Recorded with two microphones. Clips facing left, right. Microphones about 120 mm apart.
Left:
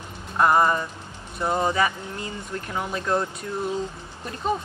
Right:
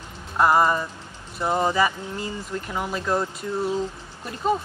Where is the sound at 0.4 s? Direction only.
5° right (ahead or behind).